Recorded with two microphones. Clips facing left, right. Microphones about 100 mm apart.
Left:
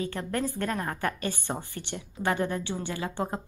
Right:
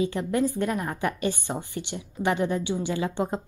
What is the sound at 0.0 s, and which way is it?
A woman's voice, 15° right (ahead or behind).